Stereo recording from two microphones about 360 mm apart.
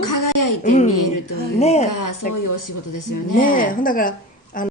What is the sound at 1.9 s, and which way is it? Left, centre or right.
Speech, left.